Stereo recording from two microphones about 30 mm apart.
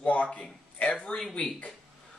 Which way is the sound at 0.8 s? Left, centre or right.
Left.